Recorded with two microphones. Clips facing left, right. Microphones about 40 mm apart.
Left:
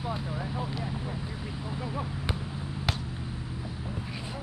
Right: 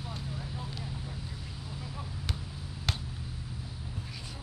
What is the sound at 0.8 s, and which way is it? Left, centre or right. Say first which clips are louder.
Vehicle: left 6 dB; left.